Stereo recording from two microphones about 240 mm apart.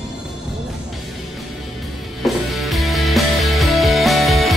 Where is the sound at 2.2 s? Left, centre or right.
Centre.